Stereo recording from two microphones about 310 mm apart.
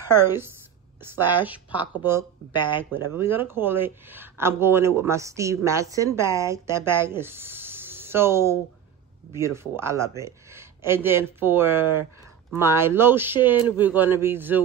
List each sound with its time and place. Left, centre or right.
0.1 s speech: centre
2.5 s speech: centre
3.1 s speech: centre